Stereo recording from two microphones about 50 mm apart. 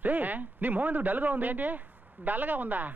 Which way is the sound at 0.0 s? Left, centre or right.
Right.